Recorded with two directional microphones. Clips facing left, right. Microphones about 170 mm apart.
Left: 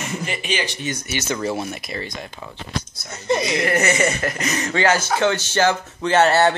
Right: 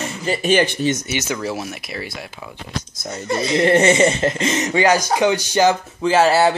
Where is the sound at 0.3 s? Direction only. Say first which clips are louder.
Right 13 dB; 45° right (ahead or behind).